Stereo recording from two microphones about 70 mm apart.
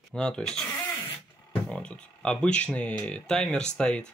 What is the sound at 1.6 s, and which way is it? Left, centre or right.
Speech, centre.